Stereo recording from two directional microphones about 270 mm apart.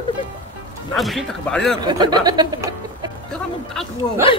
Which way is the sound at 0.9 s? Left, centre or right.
Centre.